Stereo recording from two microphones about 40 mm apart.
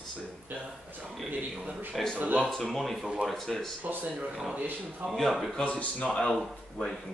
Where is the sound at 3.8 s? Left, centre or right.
Right.